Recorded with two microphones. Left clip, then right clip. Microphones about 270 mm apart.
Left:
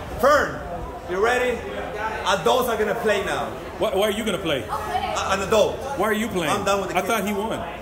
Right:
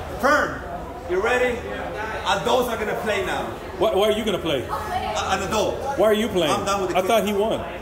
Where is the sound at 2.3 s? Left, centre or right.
Centre.